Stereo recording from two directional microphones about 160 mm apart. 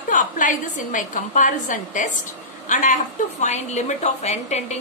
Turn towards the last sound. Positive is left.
turn(degrees=45)  # may be behind; listen again after turning